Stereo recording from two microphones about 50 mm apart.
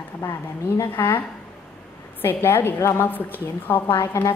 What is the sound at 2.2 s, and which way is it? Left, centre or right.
Speech, left.